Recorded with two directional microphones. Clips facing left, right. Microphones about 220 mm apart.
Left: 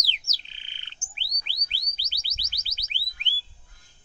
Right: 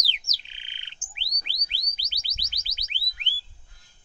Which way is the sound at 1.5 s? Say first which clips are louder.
Even; 15° right (ahead or behind).